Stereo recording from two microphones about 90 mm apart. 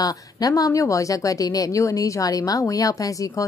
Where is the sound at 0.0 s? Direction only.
45° left (ahead or behind).